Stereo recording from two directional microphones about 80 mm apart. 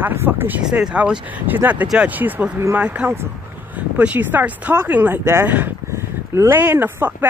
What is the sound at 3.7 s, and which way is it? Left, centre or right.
Speech, centre.